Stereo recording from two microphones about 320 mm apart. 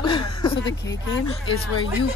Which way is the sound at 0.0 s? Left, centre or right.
Centre.